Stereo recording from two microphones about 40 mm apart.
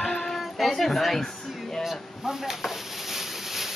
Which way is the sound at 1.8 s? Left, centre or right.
Centre.